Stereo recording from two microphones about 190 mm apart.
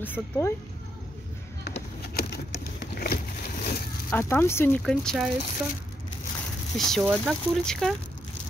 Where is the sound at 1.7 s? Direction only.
60° left (ahead or behind).